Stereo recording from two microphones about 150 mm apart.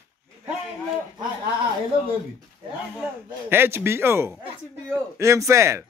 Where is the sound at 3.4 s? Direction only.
15° right (ahead or behind).